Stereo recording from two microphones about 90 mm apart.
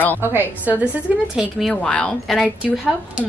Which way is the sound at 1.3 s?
5° right (ahead or behind).